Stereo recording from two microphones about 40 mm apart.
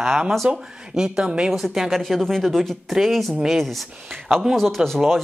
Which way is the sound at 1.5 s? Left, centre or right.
Centre.